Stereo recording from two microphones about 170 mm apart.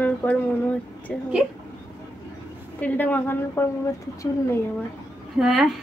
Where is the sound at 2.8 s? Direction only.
10° left (ahead or behind).